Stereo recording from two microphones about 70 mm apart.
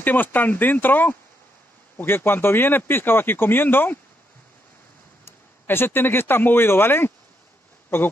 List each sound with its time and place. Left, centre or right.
0.0 s speech: left
5.2 s speech: left